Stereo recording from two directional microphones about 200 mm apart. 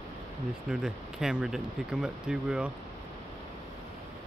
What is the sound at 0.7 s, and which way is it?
Speech, 5° right (ahead or behind).